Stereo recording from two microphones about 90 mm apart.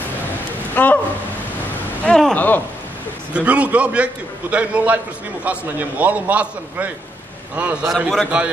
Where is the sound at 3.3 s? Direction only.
15° right (ahead or behind).